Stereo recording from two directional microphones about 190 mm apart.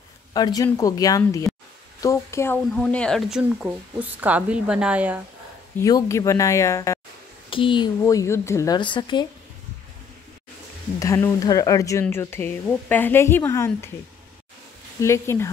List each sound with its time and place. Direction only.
0.3 s a woman's voice: 20° left (ahead or behind); by 5.2 s 5° right (ahead or behind)
5.8 s speech: 15° left (ahead or behind)
7.4 s speech: 25° left (ahead or behind)
8.0 s speech: 15° left (ahead or behind)
11.0 s speech: 15° left (ahead or behind)
15.0 s speech: 15° left (ahead or behind)